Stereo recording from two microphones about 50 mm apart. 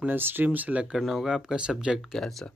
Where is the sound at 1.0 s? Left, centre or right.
Centre.